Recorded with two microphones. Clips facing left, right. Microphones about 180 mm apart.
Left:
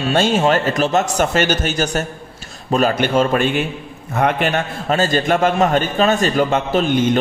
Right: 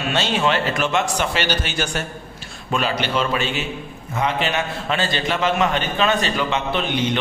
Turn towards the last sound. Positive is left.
turn(degrees=45)  # may be behind; listen again after turning